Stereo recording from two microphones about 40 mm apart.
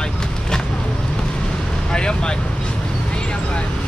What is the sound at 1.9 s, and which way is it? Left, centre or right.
Vehicle, left.